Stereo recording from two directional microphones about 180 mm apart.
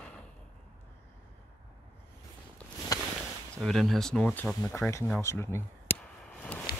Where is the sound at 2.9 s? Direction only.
20° left (ahead or behind).